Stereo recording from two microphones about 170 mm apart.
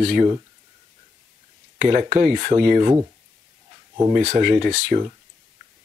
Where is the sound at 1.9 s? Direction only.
50° right (ahead or behind).